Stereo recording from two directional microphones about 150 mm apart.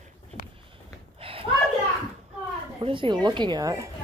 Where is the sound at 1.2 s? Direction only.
35° right (ahead or behind).